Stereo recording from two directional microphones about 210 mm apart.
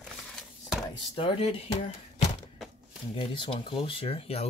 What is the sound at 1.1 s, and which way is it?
Speech, 25° left (ahead or behind).